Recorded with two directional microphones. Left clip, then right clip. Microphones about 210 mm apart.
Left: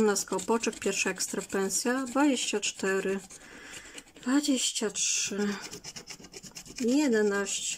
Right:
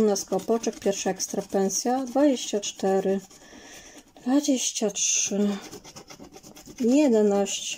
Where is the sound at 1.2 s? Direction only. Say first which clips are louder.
Right 5 dB; 45° left (ahead or behind).